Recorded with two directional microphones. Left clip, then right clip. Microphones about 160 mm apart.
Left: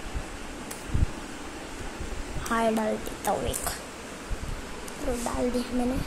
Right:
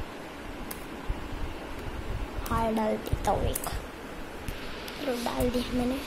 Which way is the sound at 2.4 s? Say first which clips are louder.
Left 3 dB; 20° left (ahead or behind).